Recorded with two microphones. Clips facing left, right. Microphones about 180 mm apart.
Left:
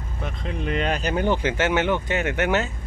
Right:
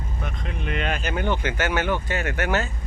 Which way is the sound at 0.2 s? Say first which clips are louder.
Left 4 dB; 30° left (ahead or behind).